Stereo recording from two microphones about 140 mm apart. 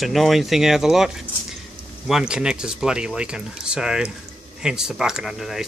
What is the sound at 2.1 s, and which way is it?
Speech, 5° right (ahead or behind).